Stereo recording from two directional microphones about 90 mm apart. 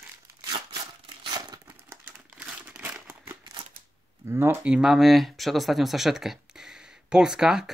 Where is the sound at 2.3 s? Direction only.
10° right (ahead or behind).